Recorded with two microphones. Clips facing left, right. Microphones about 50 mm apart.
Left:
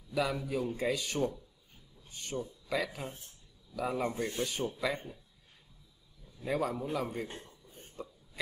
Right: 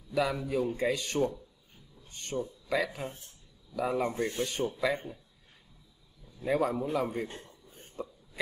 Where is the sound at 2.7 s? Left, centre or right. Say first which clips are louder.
Right 3 dB; centre.